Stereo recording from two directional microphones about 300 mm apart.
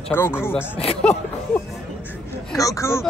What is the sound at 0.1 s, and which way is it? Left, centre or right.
Speech, centre.